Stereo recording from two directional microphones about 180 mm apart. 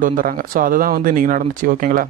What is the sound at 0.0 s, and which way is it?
Speech, 50° right (ahead or behind).